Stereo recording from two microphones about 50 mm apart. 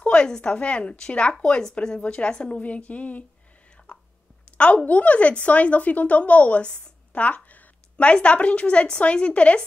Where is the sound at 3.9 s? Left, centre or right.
Left.